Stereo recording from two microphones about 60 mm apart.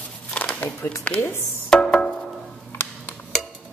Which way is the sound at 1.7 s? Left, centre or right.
Centre.